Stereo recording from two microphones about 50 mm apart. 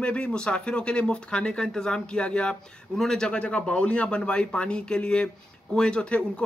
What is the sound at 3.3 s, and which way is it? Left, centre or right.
Speech, left.